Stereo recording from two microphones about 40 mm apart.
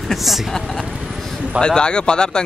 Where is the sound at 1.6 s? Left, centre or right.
Left.